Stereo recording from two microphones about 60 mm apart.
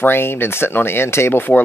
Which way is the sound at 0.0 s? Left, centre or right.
Left.